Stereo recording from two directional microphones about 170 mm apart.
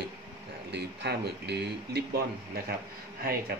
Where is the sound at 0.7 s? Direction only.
80° right.